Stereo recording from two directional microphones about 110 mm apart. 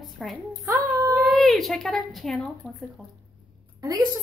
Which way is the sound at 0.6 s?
30° right (ahead or behind).